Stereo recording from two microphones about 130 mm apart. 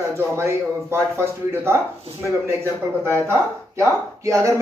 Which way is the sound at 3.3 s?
20° right (ahead or behind).